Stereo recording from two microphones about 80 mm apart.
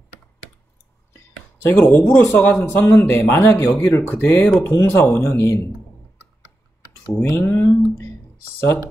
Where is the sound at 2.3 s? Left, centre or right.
Left.